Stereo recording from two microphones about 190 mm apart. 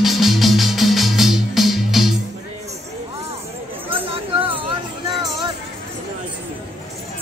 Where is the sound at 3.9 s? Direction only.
30° right (ahead or behind).